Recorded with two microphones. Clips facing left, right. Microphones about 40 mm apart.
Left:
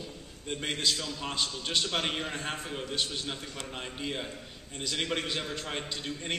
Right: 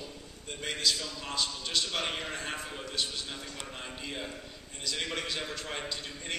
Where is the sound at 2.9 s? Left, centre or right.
Left.